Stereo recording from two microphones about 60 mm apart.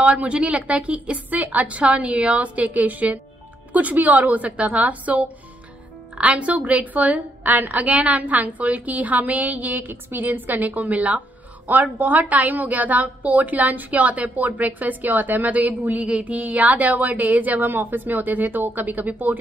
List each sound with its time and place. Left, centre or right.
0.0 s a woman's voice: right